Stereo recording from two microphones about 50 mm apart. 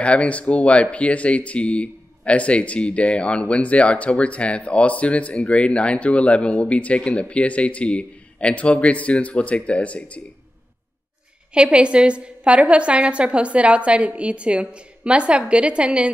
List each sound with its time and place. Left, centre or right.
0.0 s speech: left
11.5 s a woman's voice: right